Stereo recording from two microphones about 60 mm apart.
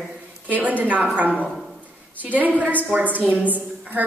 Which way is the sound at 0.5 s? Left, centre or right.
Right.